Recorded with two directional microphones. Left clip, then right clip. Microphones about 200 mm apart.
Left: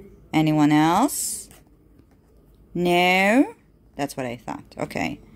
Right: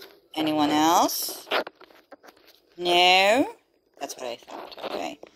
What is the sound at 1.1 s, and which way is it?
Speech, 45° left (ahead or behind).